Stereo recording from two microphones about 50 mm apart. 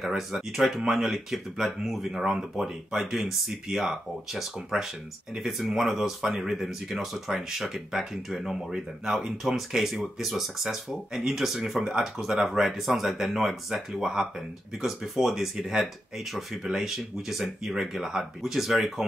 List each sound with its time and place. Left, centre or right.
0.0 s speech: centre
11.8 s speech: centre
12.2 s speech: centre